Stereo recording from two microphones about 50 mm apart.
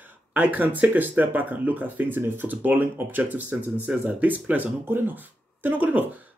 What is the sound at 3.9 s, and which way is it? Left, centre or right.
Speech, right.